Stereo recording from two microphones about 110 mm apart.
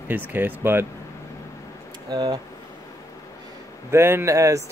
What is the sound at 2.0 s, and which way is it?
Speech, 35° right (ahead or behind).